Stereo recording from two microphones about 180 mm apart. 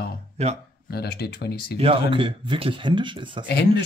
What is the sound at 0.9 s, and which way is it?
Speech, 60° left (ahead or behind).